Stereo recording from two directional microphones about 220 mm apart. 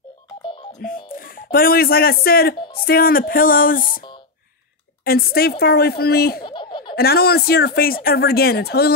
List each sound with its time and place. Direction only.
0.7 s speech: 40° left (ahead or behind)
5.0 s speech: 45° left (ahead or behind)
6.4 s a sound: 20° left (ahead or behind)
7.0 s speech: 45° left (ahead or behind)